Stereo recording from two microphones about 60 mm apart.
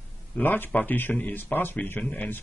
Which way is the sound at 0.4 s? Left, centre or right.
Left.